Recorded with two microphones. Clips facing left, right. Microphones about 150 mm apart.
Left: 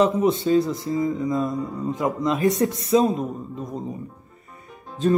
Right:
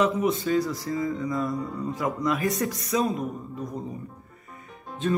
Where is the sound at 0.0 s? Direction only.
25° left (ahead or behind).